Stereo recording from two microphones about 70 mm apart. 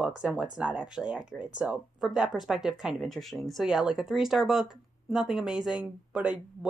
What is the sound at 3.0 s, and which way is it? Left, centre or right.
Speech, centre.